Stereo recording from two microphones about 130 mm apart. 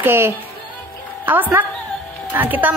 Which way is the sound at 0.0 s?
15° right (ahead or behind).